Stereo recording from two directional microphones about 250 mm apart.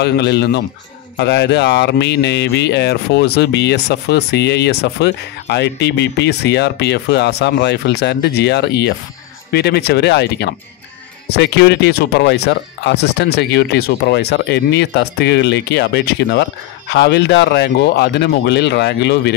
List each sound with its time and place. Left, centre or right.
0.0 s speech: left